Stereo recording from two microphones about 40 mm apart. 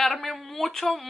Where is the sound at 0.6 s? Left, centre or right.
Centre.